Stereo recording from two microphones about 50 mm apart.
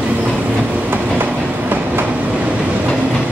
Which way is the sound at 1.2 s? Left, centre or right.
Right.